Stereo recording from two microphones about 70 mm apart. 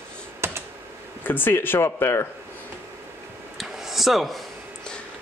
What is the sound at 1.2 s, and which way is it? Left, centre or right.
Speech, left.